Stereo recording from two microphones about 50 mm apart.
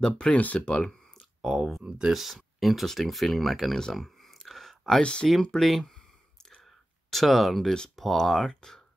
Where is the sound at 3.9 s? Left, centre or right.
Centre.